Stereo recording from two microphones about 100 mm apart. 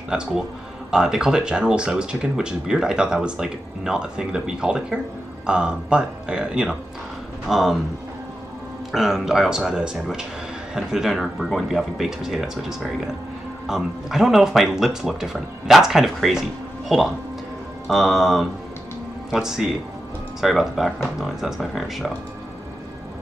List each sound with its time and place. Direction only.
0.1 s speech: 5° right (ahead or behind)
8.9 s speech: centre (ahead or behind)